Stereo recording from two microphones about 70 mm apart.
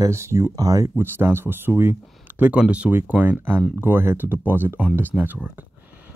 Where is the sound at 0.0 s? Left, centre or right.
Right.